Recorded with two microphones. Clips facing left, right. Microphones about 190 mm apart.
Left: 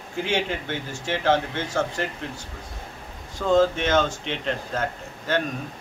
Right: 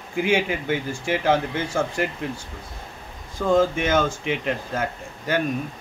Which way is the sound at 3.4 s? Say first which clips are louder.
Even; 10° right (ahead or behind).